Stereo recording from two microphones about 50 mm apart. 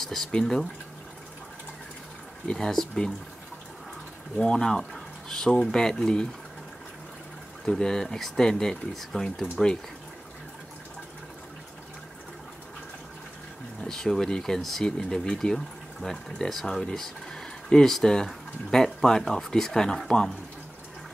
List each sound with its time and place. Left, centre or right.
0.0 s speech: centre
2.5 s speech: centre
4.4 s speech: centre
7.6 s speech: centre
13.8 s speech: centre
16.6 s speech: centre